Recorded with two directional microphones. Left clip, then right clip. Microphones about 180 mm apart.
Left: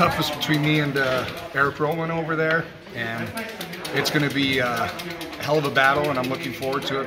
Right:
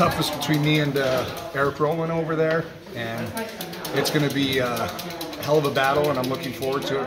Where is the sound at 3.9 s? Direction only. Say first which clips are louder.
Even; 15° right (ahead or behind).